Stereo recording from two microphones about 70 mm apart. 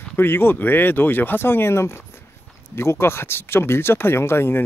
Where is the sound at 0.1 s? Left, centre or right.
Left.